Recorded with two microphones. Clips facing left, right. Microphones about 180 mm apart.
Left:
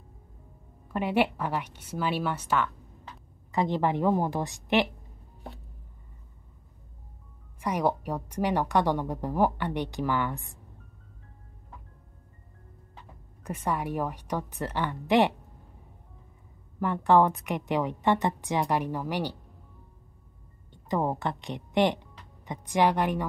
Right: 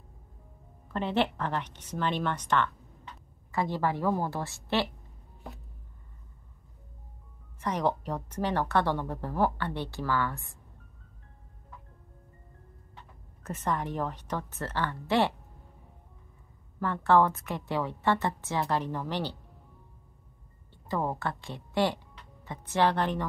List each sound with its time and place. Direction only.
0.8 s a woman's voice: 10° left (ahead or behind)
3.5 s a woman's voice: 20° left (ahead or behind)
7.6 s a woman's voice: 10° left (ahead or behind)
13.4 s a woman's voice: 10° left (ahead or behind)
16.8 s a woman's voice: 15° left (ahead or behind)
20.7 s speech: 15° left (ahead or behind)